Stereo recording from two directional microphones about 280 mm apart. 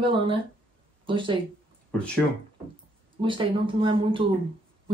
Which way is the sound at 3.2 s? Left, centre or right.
Centre.